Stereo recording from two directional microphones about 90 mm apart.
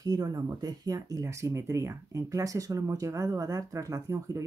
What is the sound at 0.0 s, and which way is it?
Speech, 45° right (ahead or behind).